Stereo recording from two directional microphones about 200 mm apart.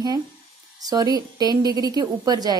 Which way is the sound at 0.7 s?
20° right (ahead or behind).